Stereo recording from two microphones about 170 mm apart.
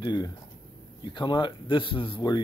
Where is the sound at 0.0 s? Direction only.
25° left (ahead or behind).